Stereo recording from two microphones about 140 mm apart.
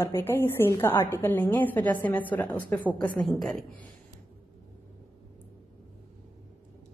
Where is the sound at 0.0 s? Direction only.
15° left (ahead or behind).